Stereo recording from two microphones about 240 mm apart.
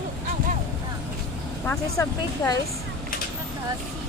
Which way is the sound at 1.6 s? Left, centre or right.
Centre.